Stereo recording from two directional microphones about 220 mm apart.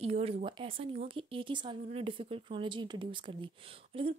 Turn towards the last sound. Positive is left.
turn(degrees=-25)  # may be behind; listen again after turning